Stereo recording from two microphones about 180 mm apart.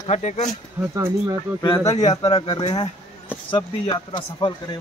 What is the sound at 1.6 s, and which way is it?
Speech, 20° left (ahead or behind).